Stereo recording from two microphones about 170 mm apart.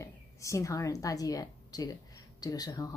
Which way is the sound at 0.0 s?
20° left (ahead or behind).